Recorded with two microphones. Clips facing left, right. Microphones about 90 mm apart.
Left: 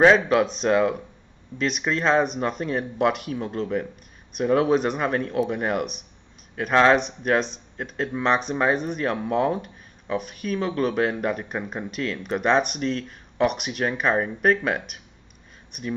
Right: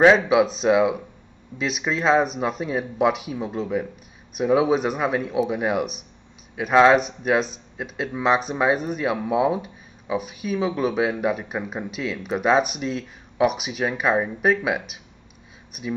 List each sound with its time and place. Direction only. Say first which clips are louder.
0.3 s speech: right 2 dB; 5° right (ahead or behind)